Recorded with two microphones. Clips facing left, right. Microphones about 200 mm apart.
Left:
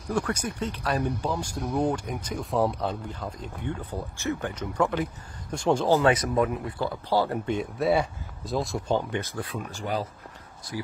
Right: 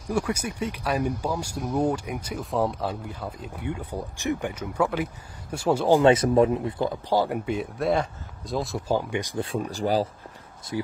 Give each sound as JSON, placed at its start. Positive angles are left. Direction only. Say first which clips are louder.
{"t": 0.1, "sound": "speech", "louder": "right 1 dB", "side_deg": -10}
{"t": 6.1, "sound": "speech", "louder": "right 5 dB", "side_deg": -30}
{"t": 7.8, "sound": "speech", "louder": "left 1 dB", "side_deg": 5}
{"t": 9.4, "sound": "speech", "louder": "right 6 dB", "side_deg": -35}
{"t": 10.7, "sound": "speech", "louder": "right 5 dB", "side_deg": -25}